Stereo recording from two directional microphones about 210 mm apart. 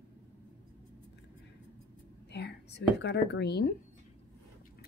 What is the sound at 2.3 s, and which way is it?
Speech, 55° left (ahead or behind).